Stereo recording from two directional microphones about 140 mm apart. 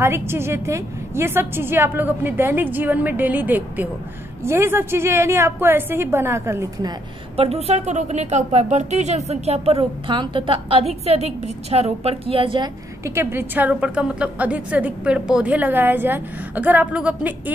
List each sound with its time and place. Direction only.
0.0 s a woman's voice: 20° right (ahead or behind)
7.3 s a woman's voice: 50° right (ahead or behind)
13.0 s a woman's voice: 20° right (ahead or behind)